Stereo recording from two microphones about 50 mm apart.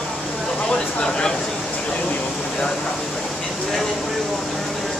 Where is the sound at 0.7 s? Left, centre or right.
Left.